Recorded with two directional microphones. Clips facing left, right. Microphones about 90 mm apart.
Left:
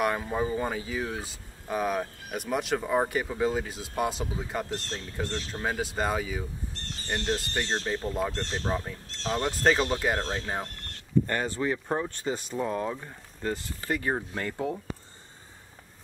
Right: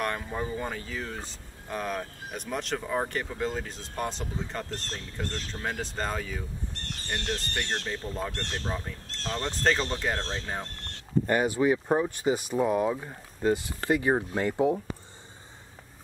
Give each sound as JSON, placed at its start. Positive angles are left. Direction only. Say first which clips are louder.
{"t": 0.0, "sound": "speech", "louder": "left 4 dB", "side_deg": 5}
{"t": 11.2, "sound": "speech", "louder": "right 5 dB", "side_deg": -15}